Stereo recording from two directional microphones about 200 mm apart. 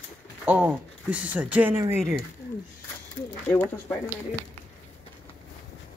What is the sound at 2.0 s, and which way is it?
Speech, centre (ahead or behind).